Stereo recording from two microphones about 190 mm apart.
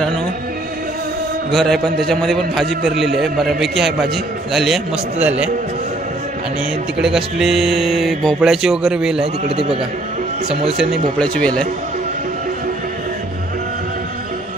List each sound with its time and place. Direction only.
1.5 s speech: centre (ahead or behind)
7.0 s speech: 5° right (ahead or behind)
9.2 s speech: 30° right (ahead or behind)
11.1 s speech: 5° left (ahead or behind)